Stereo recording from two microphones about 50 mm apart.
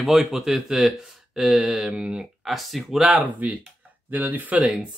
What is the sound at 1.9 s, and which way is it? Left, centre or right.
Speech, right.